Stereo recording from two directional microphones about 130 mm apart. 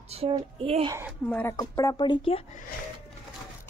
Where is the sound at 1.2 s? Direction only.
10° left (ahead or behind).